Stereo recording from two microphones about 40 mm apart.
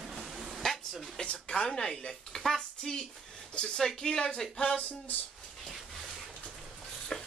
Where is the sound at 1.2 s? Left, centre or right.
Left.